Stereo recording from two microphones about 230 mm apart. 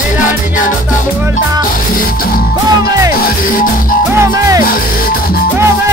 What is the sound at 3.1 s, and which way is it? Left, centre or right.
Music, left.